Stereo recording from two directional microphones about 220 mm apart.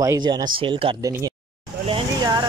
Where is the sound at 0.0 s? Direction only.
15° right (ahead or behind).